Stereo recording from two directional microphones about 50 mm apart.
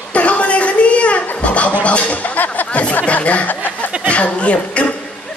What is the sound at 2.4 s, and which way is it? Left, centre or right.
Music, left.